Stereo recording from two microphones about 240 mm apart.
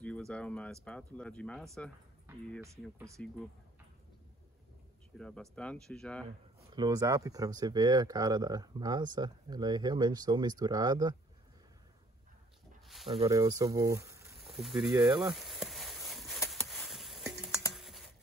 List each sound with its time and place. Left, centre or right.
0.0 s speech: centre
2.6 s speech: centre
5.1 s speech: centre
6.7 s speech: centre
12.8 s a sound: centre
13.3 s speech: centre
14.4 s speech: centre
15.1 s a sound: centre
17.7 s typing: centre